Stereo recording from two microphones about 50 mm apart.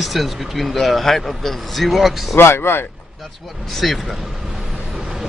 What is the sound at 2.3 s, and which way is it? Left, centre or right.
Speech, left.